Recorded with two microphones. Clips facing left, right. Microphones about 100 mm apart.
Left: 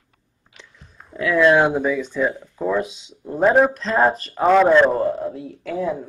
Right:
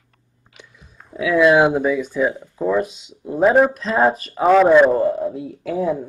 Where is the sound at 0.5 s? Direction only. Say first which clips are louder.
Right 1 dB; 5° right (ahead or behind).